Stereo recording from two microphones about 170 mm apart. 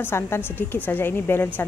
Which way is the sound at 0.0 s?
15° left (ahead or behind).